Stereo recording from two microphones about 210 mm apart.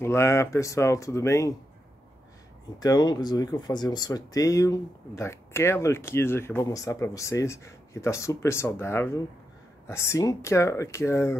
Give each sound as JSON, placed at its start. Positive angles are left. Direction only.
{"t": 0.0, "sound": "speech", "side_deg": 10}
{"t": 2.8, "sound": "speech", "side_deg": 20}